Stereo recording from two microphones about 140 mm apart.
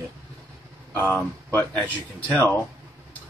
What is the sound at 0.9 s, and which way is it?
Speech, 15° left (ahead or behind).